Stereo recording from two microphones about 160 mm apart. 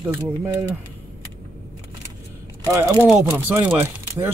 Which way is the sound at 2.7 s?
20° right (ahead or behind).